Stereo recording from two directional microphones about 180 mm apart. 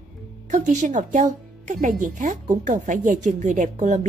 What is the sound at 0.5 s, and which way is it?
A woman's voice, 40° right (ahead or behind).